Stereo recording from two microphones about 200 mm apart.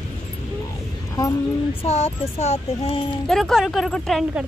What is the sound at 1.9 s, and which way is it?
Speech, 30° left (ahead or behind).